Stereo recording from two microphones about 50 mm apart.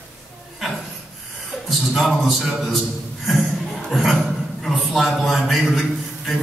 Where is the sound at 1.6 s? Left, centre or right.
Centre.